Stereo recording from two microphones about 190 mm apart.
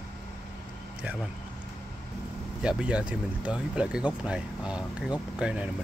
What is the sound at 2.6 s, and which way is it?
Speech, 5° right (ahead or behind).